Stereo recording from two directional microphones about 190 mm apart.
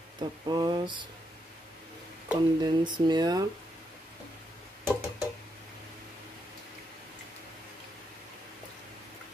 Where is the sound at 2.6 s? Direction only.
25° right (ahead or behind).